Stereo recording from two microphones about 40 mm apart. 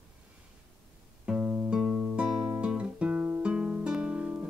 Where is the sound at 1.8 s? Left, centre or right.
Centre.